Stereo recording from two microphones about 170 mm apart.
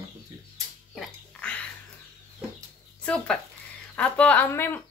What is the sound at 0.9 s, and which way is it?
Music, 5° left (ahead or behind).